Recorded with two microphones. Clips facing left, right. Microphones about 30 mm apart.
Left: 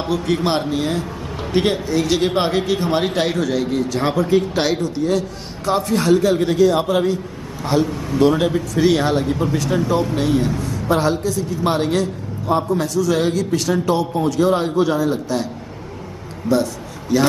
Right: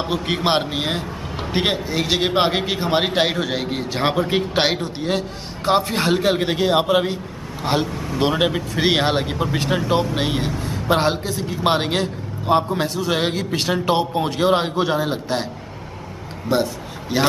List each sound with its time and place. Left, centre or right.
0.1 s a man's voice: right
14.8 s a man's voice: right
16.4 s a man's voice: right